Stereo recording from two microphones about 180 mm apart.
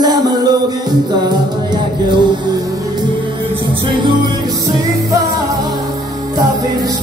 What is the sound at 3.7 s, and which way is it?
Music, 25° right (ahead or behind).